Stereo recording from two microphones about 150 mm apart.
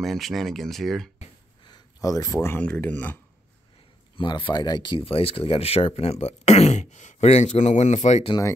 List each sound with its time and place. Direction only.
0.0 s speech: centre (ahead or behind)
1.6 s speech: 25° left (ahead or behind)
4.2 s speech: 30° left (ahead or behind); by 8.3 s 50° left (ahead or behind)